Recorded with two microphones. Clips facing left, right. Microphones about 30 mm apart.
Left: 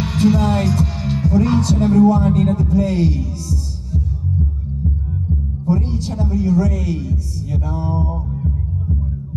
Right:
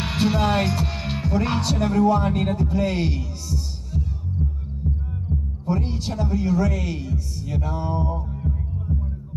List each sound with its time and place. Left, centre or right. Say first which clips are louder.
0.0 s speech: left 5 dB; right
2.0 s heart sounds: left 5 dB; right
5.7 s speech: left 5 dB; right